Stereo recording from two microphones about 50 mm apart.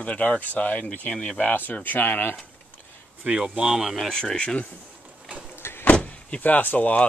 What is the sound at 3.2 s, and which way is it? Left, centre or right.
Speech, right.